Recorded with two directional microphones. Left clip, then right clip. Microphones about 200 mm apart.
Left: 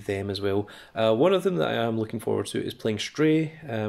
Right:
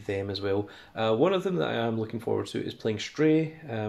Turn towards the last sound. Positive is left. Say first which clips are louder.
# left 1 dB
turn(degrees=45)  # may be behind; listen again after turning